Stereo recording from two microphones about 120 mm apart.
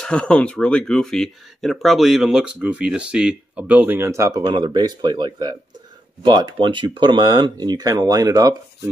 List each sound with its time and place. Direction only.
0.0 s speech: 10° left (ahead or behind); by 4.4 s 25° right (ahead or behind)
4.4 s speech: 40° right (ahead or behind)